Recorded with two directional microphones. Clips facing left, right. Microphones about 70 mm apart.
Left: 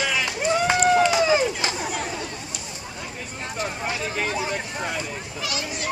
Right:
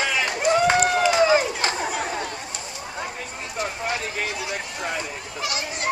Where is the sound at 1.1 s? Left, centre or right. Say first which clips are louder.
Right 2 dB; right.